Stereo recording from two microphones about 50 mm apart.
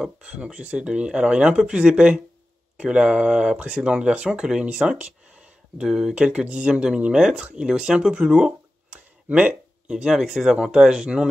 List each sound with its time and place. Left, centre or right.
0.0 s speech: right
9.8 s speech: centre